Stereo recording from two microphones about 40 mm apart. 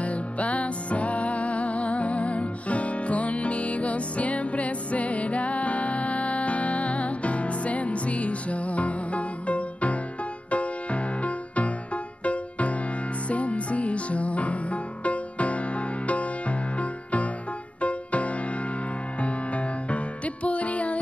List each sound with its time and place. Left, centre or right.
0.0 s music: left